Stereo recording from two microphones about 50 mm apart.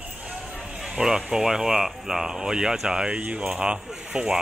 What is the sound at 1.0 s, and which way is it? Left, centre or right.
Speech, centre.